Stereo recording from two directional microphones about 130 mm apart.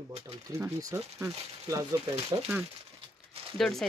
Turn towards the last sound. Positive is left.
turn(degrees=0)  # may be behind; listen again after turning